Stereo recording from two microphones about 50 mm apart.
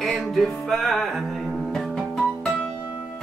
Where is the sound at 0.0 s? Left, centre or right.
Centre.